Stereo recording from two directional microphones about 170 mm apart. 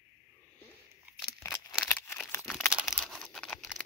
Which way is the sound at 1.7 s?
5° left (ahead or behind).